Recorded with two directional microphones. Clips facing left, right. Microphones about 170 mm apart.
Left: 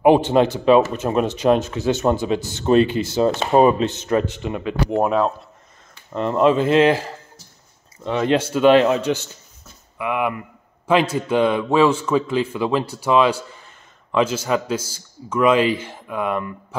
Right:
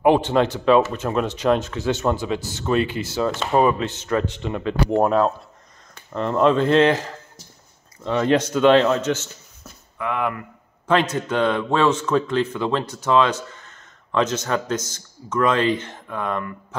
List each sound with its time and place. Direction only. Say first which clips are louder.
0.0 s a man's voice: left 3 dB; 15° left (ahead or behind)
8.5 s a man's voice: left 2 dB; 15° left (ahead or behind)